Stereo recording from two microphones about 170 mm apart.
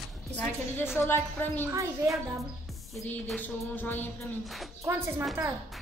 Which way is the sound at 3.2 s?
10° left (ahead or behind).